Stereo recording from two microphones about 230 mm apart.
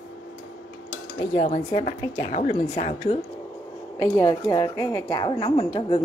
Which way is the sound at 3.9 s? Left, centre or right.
Centre.